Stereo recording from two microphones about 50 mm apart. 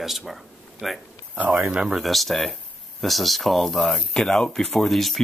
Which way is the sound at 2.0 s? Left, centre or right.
Centre.